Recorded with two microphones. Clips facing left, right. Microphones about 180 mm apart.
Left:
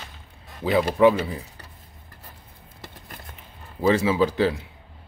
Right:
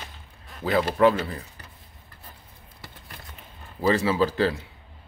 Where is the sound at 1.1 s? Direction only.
Centre (ahead or behind).